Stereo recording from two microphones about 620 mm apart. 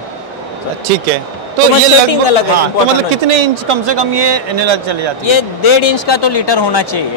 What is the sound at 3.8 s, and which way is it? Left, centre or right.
Speech, right.